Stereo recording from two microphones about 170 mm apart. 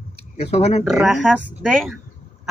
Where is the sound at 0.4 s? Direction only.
40° left (ahead or behind).